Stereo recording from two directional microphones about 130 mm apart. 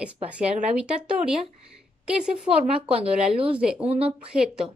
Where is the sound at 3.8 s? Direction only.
50° right (ahead or behind).